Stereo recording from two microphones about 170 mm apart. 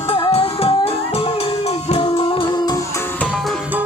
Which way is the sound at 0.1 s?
35° left (ahead or behind).